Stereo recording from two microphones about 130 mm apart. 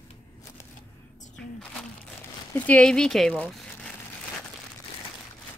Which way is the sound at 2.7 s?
5° left (ahead or behind).